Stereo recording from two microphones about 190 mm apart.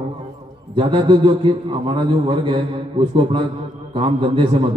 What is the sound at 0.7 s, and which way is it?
A man's voice, 25° right (ahead or behind).